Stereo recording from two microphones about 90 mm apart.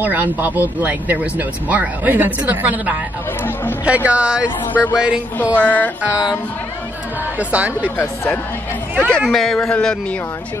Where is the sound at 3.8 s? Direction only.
15° right (ahead or behind).